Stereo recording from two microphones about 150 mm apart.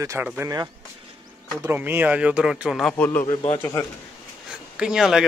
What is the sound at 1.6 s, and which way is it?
Speech, 15° right (ahead or behind).